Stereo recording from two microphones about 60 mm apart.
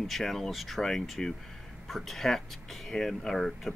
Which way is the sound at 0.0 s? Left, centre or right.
Centre.